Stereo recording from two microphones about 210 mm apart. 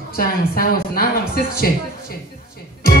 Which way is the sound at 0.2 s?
45° left (ahead or behind).